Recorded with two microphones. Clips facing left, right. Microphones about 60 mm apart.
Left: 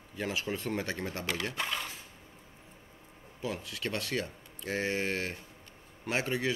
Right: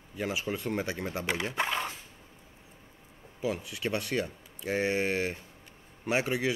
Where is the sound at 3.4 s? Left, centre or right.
Centre.